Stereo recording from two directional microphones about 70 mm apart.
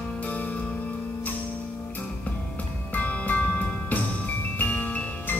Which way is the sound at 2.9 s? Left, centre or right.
Left.